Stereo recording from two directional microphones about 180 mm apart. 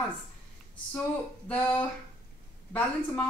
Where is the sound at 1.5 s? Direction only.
10° left (ahead or behind).